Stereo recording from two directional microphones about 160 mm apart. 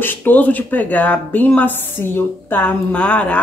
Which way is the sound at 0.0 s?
10° left (ahead or behind).